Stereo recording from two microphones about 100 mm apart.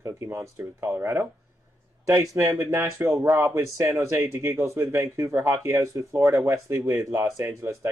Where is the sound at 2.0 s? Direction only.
30° right (ahead or behind).